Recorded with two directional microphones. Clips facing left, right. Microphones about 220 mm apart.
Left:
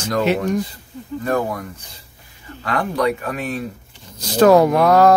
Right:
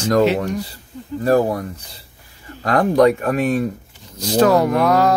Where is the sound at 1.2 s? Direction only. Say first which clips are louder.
Right 6 dB; 35° right (ahead or behind).